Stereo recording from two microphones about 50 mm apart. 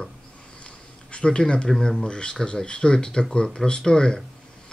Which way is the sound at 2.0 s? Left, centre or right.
Centre.